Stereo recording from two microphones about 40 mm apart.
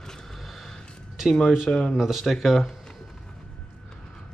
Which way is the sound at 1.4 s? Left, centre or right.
Centre.